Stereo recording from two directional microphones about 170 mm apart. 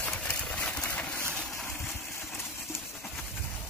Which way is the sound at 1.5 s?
15° left (ahead or behind).